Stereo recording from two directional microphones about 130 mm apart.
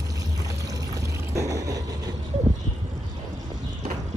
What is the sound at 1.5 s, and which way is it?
Vehicle, 25° right (ahead or behind).